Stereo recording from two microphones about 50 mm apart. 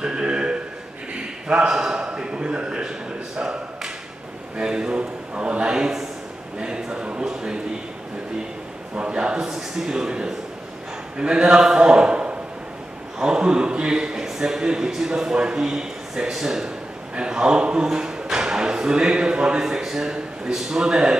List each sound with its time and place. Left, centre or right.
0.0 s a sound: centre
3.3 s tap: centre
4.6 s a man's voice: centre
8.9 s speech: centre
9.5 s a man's voice: centre